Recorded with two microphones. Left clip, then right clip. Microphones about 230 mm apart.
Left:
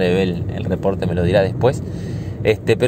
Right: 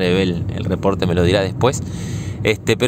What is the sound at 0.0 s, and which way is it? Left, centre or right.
Speech, right.